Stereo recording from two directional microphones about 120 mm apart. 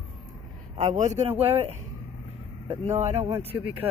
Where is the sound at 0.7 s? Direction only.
80° right.